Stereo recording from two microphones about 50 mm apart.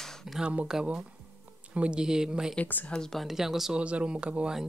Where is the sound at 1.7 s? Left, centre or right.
Right.